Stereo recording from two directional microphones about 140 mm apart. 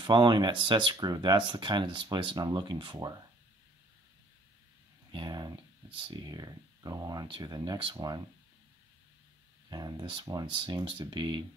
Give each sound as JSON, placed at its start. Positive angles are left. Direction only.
{"t": 0.0, "sound": "speech", "side_deg": -35}
{"t": 5.1, "sound": "speech", "side_deg": -30}
{"t": 9.7, "sound": "speech", "side_deg": -30}